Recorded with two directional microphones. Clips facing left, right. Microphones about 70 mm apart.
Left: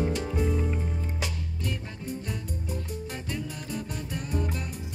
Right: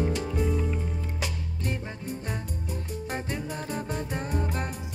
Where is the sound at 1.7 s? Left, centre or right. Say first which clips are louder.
Right 2 dB; right.